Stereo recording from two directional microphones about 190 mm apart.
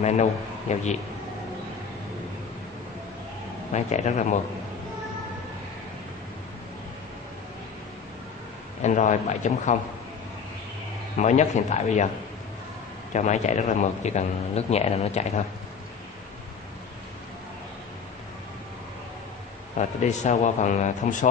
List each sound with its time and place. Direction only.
0.0 s a man's voice: 35° left (ahead or behind)
3.7 s a man's voice: 40° left (ahead or behind)
8.8 s a man's voice: 40° left (ahead or behind)
11.1 s a man's voice: 40° left (ahead or behind)
13.1 s a man's voice: 40° left (ahead or behind)
19.8 s a man's voice: 40° left (ahead or behind)